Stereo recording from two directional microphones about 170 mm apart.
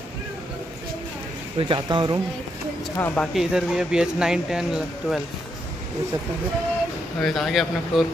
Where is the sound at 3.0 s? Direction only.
10° left (ahead or behind).